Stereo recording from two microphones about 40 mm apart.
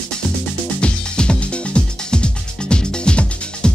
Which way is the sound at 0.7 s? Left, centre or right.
Left.